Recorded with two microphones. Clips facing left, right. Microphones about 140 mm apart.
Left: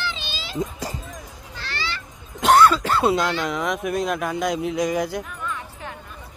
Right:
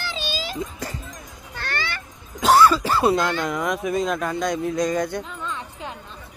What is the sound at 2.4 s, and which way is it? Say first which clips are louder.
Cough: even; 5° right (ahead or behind).